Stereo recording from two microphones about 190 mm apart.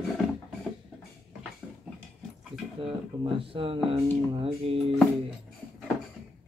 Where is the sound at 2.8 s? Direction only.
30° right (ahead or behind).